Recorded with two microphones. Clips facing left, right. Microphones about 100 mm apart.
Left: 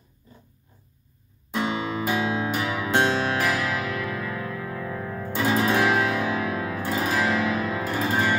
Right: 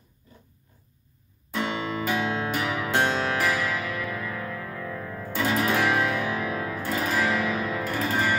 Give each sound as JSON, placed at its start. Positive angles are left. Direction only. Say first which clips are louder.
{"t": 1.6, "sound": "music", "louder": "left 2 dB", "side_deg": 20}
{"t": 2.1, "sound": "music", "louder": "left 2 dB", "side_deg": 10}
{"t": 5.3, "sound": "music", "louder": "left 2 dB", "side_deg": 30}
{"t": 5.6, "sound": "music", "louder": "left 2 dB", "side_deg": 15}